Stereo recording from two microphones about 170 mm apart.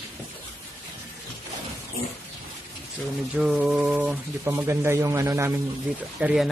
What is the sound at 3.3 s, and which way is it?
Mantra, 5° right (ahead or behind).